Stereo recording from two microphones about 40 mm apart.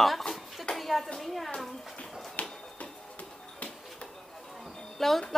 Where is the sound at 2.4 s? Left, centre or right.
Left.